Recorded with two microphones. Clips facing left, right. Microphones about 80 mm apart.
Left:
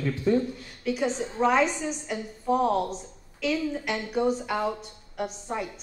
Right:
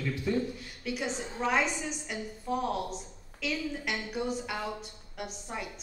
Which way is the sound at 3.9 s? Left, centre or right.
Left.